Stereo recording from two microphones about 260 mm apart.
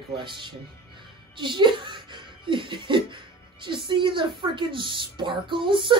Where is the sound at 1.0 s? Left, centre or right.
Centre.